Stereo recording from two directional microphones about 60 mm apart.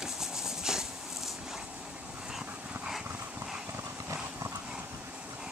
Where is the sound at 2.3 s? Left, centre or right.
Centre.